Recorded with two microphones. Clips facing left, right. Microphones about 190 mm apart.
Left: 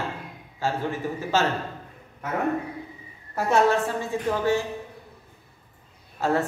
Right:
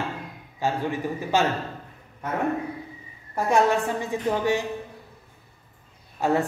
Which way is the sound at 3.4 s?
15° right (ahead or behind).